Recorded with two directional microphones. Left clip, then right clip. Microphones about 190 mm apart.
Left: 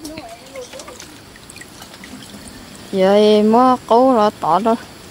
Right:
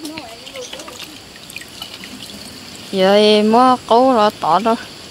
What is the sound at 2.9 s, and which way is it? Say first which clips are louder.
Speech: even; 10° left (ahead or behind).